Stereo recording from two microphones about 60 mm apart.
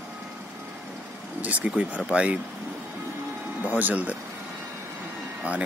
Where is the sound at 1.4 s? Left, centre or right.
Right.